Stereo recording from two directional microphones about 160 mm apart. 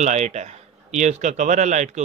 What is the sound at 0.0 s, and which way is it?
Speech, 45° right (ahead or behind).